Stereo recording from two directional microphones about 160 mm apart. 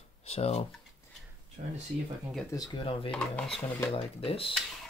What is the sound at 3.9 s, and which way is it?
Speech, 35° left (ahead or behind).